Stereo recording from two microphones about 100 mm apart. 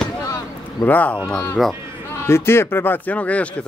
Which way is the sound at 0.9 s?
15° left (ahead or behind).